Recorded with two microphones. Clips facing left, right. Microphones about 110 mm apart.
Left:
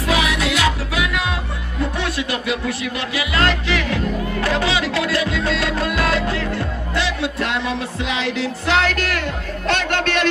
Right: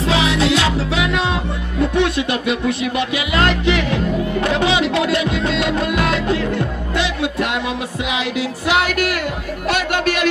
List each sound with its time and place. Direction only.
0.1 s music: 30° right (ahead or behind); by 10.2 s 10° right (ahead or behind)